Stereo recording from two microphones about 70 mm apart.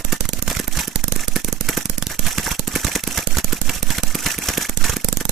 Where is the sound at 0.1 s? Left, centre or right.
Centre.